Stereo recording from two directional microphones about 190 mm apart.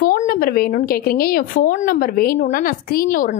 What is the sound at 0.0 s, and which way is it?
A woman's voice, 50° left (ahead or behind).